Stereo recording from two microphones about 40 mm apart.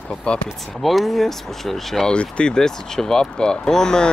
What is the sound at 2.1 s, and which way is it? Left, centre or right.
Speech, left.